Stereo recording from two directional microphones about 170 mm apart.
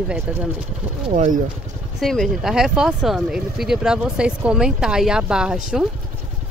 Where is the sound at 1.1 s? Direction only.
45° right (ahead or behind).